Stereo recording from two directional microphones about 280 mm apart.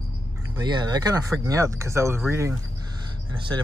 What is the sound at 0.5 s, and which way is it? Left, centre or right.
Speech, centre.